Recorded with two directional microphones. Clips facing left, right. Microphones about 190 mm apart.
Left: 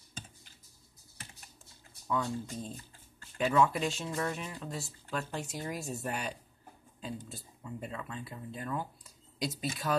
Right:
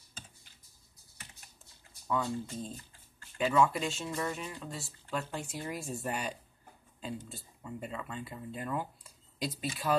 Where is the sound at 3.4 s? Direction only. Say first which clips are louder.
Even; centre (ahead or behind).